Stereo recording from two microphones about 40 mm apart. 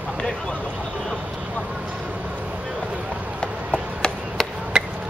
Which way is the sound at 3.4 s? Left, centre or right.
Left.